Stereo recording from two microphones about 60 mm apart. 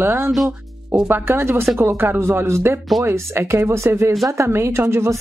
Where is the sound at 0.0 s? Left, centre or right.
Right.